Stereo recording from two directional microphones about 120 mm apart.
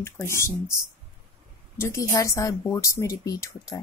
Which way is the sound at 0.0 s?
25° left (ahead or behind).